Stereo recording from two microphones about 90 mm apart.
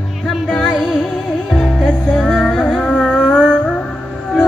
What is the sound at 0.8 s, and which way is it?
Music, 10° left (ahead or behind).